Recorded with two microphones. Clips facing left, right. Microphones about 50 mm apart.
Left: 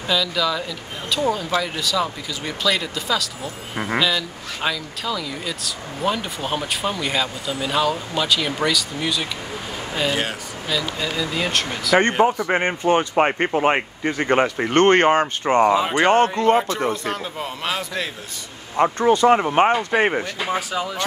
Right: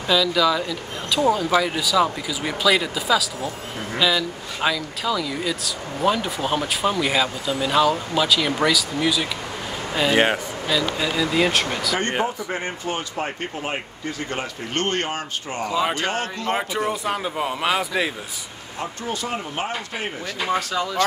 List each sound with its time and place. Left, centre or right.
0.1 s speech: centre
10.1 s speech: right
10.7 s speech: centre
12.4 s speech: left
13.1 s speech: left
14.0 s speech: left
16.5 s a man's voice: centre
18.8 s speech: left
19.2 s speech: left
20.3 s speech: centre